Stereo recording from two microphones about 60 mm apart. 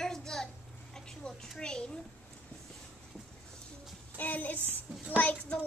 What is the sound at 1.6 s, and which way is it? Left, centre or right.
Child singing, centre.